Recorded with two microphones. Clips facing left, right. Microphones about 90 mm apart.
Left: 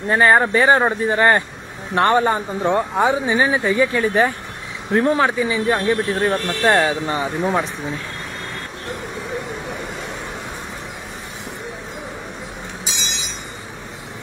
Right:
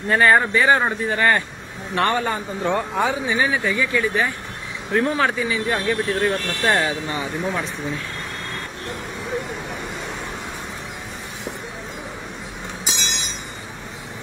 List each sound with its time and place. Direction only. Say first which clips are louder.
0.1 s a man's voice: left 2 dB; 30° left (ahead or behind)
5.4 s speech: left 4 dB; 15° left (ahead or behind)